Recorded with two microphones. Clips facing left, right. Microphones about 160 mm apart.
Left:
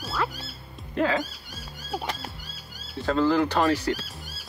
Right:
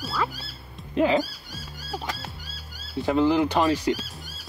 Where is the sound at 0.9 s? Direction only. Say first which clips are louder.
Right 4 dB; 15° right (ahead or behind).